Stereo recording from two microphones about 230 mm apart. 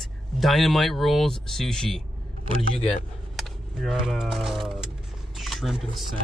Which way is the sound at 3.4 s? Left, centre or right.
Centre.